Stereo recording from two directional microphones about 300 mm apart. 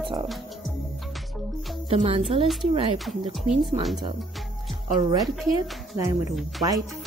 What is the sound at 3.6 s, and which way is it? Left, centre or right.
Speech, right.